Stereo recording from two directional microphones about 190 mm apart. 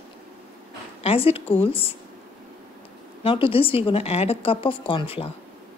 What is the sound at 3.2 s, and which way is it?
Speech, 30° left (ahead or behind).